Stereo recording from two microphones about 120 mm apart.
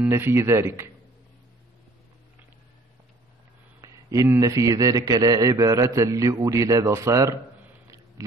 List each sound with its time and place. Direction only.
0.0 s a man's voice: 20° right (ahead or behind)
3.8 s a man's voice: 25° right (ahead or behind)